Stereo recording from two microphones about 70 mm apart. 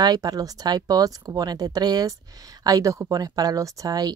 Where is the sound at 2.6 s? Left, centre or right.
Right.